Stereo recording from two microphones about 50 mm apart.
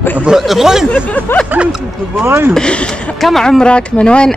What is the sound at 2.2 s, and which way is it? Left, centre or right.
Speech, right.